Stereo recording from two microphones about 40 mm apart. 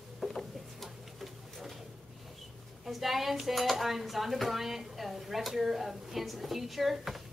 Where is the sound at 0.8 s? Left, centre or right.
Centre.